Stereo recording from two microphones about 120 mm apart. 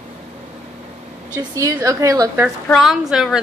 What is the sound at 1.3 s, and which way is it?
Speech, 25° right (ahead or behind).